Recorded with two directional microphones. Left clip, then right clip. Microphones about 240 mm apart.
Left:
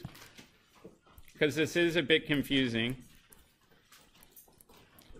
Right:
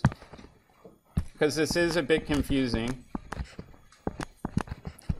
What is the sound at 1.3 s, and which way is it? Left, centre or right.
Speech, centre.